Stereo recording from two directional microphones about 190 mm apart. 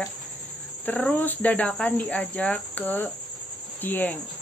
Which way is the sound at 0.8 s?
10° left (ahead or behind).